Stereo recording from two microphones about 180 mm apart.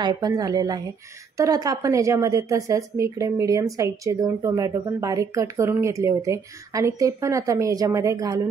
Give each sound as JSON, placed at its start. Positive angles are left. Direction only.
{"t": 0.0, "sound": "a woman's voice", "side_deg": -20}